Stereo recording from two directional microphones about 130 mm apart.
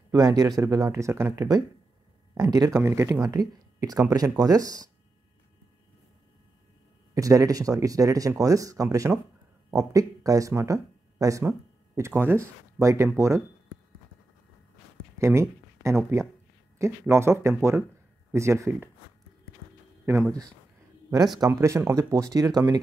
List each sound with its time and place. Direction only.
0.1 s speech: 30° right (ahead or behind)
7.2 s speech: 25° right (ahead or behind)
15.1 s speech: 20° right (ahead or behind)
21.4 s speech: 20° right (ahead or behind)